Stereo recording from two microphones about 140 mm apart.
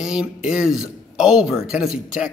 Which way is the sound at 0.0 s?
5° right (ahead or behind).